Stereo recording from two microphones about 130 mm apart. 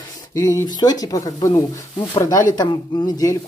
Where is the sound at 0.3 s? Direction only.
25° left (ahead or behind).